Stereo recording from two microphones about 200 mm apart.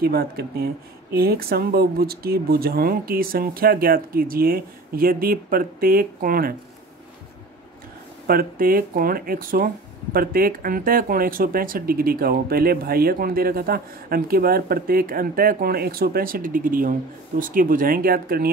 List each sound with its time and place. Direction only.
0.0 s speech: 50° right (ahead or behind)
8.3 s speech: 45° right (ahead or behind)